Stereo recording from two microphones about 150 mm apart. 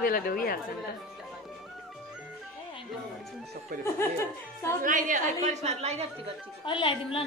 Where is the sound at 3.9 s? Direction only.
15° left (ahead or behind).